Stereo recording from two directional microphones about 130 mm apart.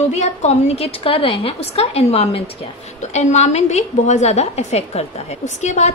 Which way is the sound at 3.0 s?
65° left (ahead or behind).